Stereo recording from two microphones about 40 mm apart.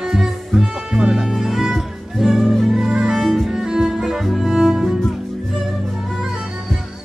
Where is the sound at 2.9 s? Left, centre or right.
Centre.